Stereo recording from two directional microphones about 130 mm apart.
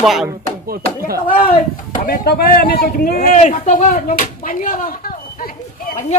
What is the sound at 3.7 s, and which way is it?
Speech, 90° left.